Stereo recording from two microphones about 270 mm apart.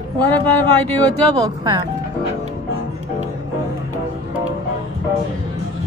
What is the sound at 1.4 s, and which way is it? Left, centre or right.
Speech, centre.